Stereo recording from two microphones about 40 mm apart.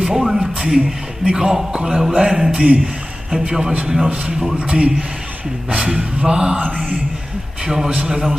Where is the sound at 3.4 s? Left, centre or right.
Right.